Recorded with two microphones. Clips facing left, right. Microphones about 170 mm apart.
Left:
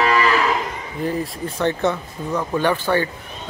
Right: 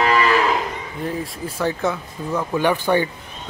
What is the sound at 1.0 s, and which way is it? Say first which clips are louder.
Speech: left 3 dB; centre (ahead or behind).